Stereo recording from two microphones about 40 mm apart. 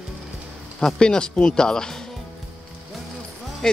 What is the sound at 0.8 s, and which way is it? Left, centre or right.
Speech, left.